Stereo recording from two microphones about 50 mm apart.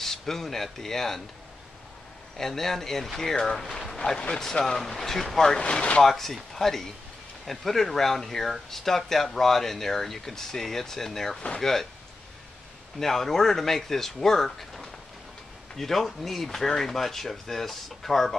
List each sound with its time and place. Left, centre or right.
0.0 s speech: centre
2.3 s speech: centre
5.6 s speech: left
6.0 s speech: centre
13.0 s speech: centre